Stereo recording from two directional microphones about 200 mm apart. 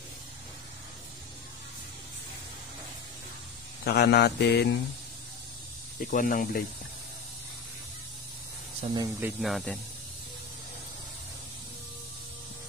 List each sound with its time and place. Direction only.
3.8 s mantra: 55° left (ahead or behind)
5.9 s speech: 45° left (ahead or behind)
8.9 s speech: 20° right (ahead or behind)
9.4 s speech: centre (ahead or behind)